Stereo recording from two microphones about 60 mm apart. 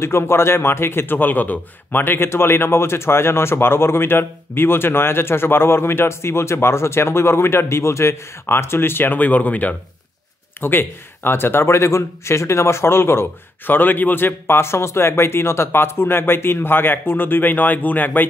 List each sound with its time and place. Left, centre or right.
0.0 s a man's voice: left
10.6 s speech: left